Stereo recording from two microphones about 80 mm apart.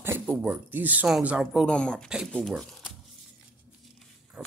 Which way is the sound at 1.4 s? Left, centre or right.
Centre.